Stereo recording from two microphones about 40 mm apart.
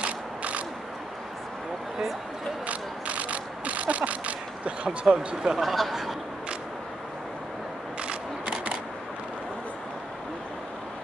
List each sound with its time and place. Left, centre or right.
0.0 s mechanisms: right
2.6 s mechanisms: right
4.8 s speech: right
5.6 s speech: centre
8.0 s single-lens reflex camera: right